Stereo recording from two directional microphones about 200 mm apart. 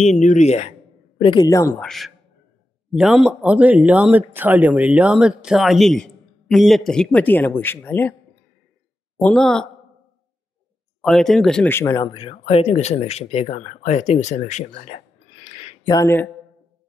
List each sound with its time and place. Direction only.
0.0 s speech: 35° left (ahead or behind)
1.2 s speech: 20° left (ahead or behind)
1.8 s speech: centre (ahead or behind)
9.2 s speech: 5° left (ahead or behind)
11.0 s speech: centre (ahead or behind); by 15.0 s 35° left (ahead or behind)
15.4 s a sound: 35° left (ahead or behind)
15.9 s speech: 15° left (ahead or behind)